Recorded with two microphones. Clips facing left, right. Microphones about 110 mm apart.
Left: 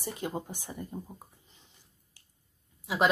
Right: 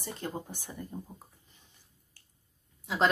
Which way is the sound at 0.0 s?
10° left (ahead or behind).